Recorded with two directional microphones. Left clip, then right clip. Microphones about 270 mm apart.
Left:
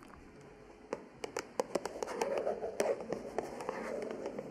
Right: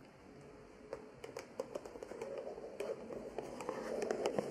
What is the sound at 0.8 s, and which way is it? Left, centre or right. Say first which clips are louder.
Hands: left 6 dB; left.